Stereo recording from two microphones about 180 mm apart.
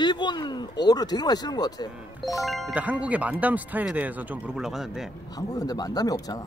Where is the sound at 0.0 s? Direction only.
25° left (ahead or behind).